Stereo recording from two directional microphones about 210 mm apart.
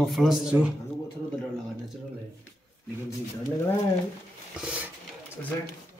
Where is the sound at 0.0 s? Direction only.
Centre (ahead or behind).